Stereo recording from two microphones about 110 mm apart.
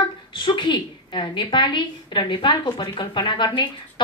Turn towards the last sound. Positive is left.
turn(degrees=45)  # may be behind; listen again after turning